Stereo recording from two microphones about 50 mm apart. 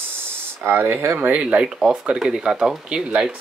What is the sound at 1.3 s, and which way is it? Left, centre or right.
Speech, right.